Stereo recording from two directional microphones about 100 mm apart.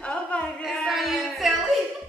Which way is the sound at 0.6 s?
Centre (ahead or behind).